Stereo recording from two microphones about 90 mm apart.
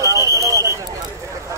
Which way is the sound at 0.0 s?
35° right (ahead or behind).